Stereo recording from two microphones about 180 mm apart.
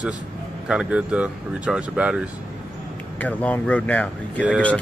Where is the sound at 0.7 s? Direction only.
5° right (ahead or behind).